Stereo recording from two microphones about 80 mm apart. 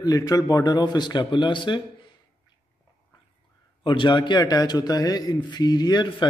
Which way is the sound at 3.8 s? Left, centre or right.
Left.